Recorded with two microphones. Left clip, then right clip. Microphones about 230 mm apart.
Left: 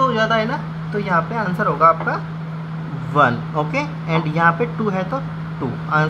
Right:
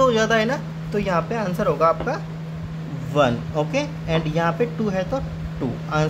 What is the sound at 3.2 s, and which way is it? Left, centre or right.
Speech, centre.